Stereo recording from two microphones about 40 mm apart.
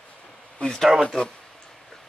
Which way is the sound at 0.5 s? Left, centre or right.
Left.